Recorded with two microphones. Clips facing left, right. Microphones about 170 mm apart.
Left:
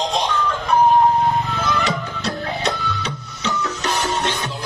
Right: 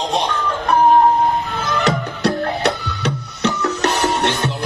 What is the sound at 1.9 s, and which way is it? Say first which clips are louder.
Music: right 6 dB; 65° right (ahead or behind).